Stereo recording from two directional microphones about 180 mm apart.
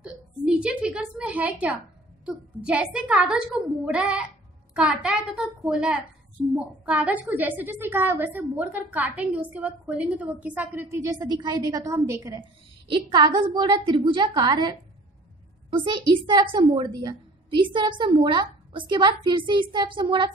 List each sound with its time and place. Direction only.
0.0 s a woman's voice: 5° right (ahead or behind); by 20.2 s 25° right (ahead or behind)